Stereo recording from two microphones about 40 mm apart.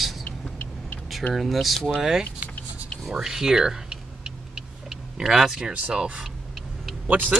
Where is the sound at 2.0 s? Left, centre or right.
Centre.